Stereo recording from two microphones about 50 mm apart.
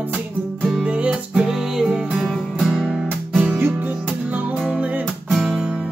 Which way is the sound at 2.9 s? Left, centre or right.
Centre.